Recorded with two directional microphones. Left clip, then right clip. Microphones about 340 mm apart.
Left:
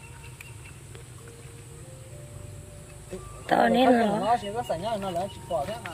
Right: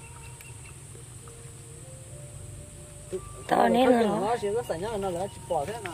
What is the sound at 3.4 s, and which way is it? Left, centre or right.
Speech, centre.